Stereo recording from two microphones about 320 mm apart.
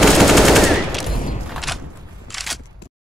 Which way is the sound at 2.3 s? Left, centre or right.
Centre.